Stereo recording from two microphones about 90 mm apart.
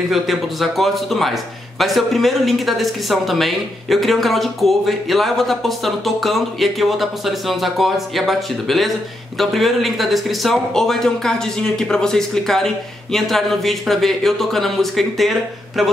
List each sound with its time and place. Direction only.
0.1 s a man's voice: centre (ahead or behind)